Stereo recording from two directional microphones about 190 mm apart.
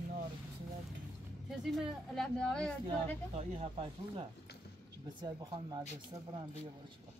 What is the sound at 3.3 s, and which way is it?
Speech, 30° right (ahead or behind).